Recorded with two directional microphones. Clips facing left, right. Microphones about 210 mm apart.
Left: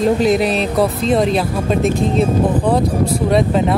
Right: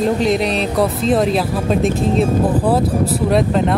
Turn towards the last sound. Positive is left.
turn(degrees=0)  # may be behind; listen again after turning